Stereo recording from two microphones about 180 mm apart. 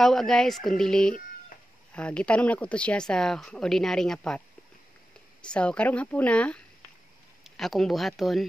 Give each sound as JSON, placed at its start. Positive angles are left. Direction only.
{"t": 0.0, "sound": "speech", "side_deg": 0}
{"t": 5.4, "sound": "speech", "side_deg": 5}